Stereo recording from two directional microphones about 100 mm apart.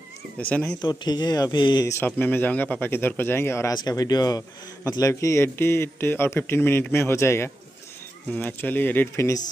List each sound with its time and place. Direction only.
0.5 s speech: 15° left (ahead or behind)
0.7 s speech: 45° left (ahead or behind)
1.9 s a man's voice: 20° left (ahead or behind)
3.7 s a man's voice: 40° left (ahead or behind)